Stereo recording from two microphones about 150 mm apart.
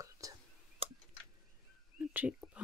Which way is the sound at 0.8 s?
40° right (ahead or behind).